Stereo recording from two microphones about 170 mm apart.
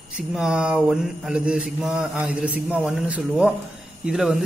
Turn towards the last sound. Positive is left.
turn(degrees=-5)  # may be behind; listen again after turning